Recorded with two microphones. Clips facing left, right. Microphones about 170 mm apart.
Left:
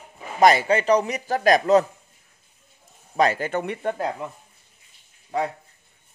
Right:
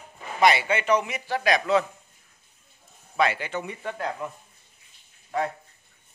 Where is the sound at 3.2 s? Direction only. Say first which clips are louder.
Left 4 dB; 45° left (ahead or behind).